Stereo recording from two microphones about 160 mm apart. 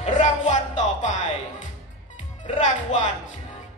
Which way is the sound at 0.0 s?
50° left (ahead or behind).